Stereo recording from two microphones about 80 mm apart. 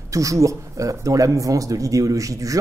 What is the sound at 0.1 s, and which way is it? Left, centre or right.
Speech, right.